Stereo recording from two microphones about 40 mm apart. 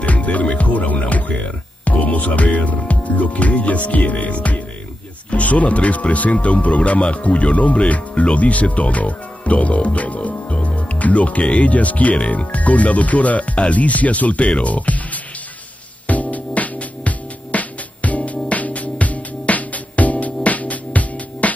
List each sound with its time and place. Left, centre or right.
0.0 s music: left
2.8 s speech: left
16.1 s music: left